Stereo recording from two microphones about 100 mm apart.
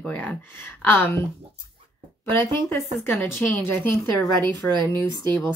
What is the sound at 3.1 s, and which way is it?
Speech, 5° left (ahead or behind).